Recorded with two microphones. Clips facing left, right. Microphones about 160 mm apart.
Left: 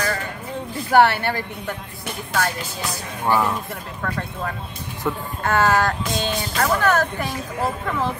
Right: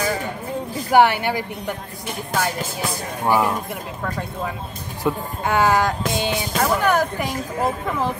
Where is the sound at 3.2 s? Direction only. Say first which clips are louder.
Right 1 dB; 15° right (ahead or behind).